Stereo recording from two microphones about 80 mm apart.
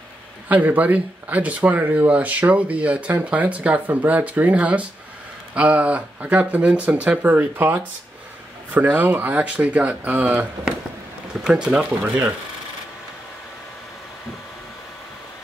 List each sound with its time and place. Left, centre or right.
0.5 s speech: centre
11.4 s speech: centre